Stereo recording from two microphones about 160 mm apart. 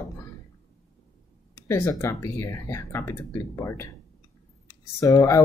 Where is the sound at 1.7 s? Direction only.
15° left (ahead or behind).